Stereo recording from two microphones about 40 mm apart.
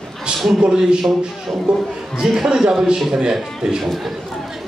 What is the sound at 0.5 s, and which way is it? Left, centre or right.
A man's voice, centre.